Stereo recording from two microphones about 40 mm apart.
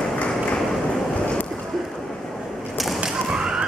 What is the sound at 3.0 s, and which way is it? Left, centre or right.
Thump, centre.